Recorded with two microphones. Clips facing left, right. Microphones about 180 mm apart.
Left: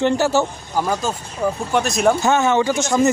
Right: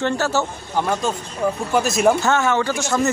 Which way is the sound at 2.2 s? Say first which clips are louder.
Left 2 dB; 15° left (ahead or behind).